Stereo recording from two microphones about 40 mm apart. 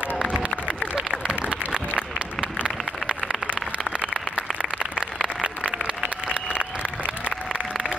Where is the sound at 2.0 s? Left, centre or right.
Left.